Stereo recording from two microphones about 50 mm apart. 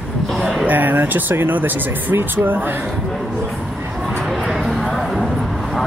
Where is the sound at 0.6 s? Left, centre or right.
Right.